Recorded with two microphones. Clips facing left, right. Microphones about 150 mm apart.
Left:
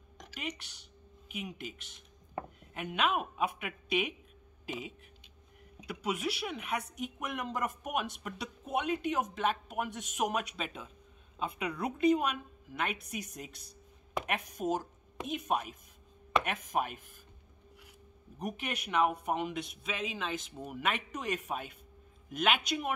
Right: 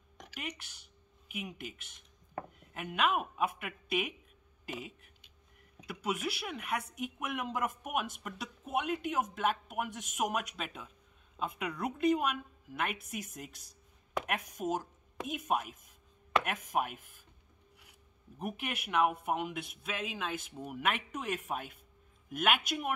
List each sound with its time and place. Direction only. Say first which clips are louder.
0.2 s a sound: left 2 dB; 5° right (ahead or behind)
1.3 s speech: left 1 dB; 5° right (ahead or behind)
13.5 s speech: left 5 dB; 45° right (ahead or behind)
14.2 s speech: left 3 dB; centre (ahead or behind)
18.4 s speech: left 1 dB; 5° right (ahead or behind)